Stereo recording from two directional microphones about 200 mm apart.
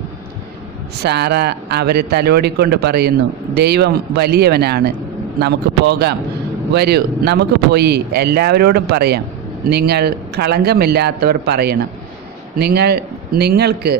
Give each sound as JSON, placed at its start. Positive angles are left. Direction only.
{"t": 1.0, "sound": "a man's voice", "side_deg": -55}